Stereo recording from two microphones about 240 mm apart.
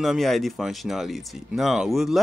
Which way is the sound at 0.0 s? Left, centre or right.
Centre.